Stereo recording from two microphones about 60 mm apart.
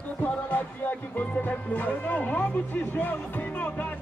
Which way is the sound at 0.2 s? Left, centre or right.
Left.